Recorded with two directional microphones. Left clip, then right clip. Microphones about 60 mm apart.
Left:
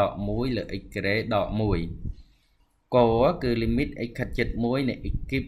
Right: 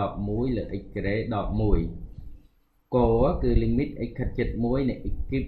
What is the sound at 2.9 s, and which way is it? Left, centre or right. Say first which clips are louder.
Speech: left 2 dB; left.